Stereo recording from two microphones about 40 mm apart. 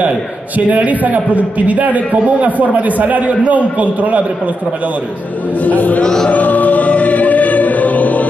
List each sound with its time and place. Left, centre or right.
0.7 s a man's voice: right
5.6 s speech: left
6.3 s choir: left